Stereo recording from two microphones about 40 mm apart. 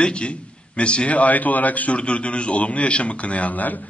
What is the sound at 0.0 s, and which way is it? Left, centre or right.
A man's voice, left.